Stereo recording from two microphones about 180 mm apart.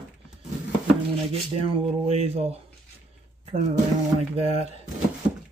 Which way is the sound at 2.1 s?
35° right (ahead or behind).